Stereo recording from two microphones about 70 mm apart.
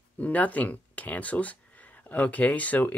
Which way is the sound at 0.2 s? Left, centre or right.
Left.